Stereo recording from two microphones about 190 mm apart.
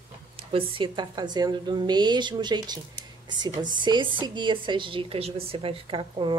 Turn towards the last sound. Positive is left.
turn(degrees=-25)  # may be behind; listen again after turning